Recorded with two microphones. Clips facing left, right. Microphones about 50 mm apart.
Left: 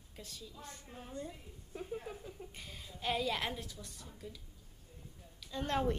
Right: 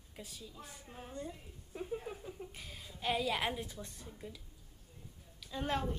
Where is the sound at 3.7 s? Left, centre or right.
Right.